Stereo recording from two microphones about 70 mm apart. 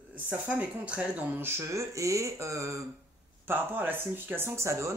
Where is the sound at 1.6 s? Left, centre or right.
Right.